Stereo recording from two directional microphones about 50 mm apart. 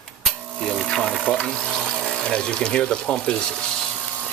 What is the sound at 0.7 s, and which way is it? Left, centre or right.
Stir, centre.